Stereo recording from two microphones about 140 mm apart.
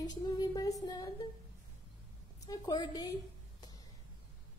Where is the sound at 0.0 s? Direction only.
30° left (ahead or behind).